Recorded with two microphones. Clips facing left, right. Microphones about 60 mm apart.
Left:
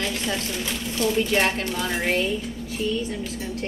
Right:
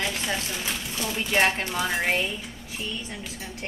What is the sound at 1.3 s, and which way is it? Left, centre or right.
Speech, centre.